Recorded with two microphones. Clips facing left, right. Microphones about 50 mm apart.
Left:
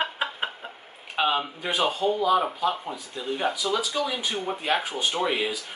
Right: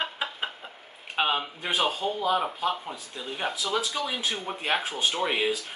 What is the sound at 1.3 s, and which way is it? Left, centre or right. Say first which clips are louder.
Speech: left 1 dB; centre.